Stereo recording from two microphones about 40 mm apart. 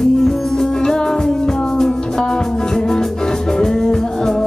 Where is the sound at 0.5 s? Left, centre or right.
Centre.